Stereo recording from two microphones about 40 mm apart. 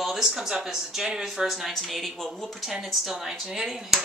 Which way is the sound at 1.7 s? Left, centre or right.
Centre.